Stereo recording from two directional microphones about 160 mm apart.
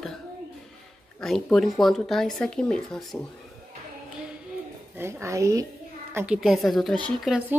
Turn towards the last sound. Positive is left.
turn(degrees=5)  # may be behind; listen again after turning